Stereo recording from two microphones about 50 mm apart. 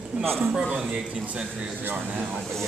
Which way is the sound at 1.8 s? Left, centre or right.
Right.